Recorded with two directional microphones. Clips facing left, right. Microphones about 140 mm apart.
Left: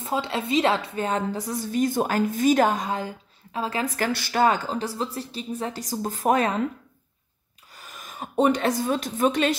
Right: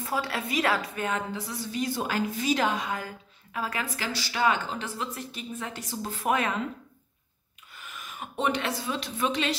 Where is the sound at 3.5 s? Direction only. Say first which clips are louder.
Left 4 dB; 25° left (ahead or behind).